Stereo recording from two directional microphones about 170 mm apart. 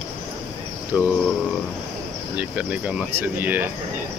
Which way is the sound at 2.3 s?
10° right (ahead or behind).